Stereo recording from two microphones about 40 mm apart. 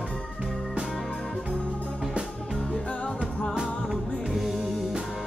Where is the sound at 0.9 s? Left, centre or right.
Centre.